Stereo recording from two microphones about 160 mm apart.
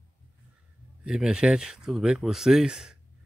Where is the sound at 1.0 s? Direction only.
5° right (ahead or behind).